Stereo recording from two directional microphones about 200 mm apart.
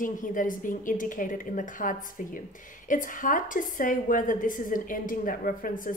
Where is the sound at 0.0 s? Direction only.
40° left (ahead or behind).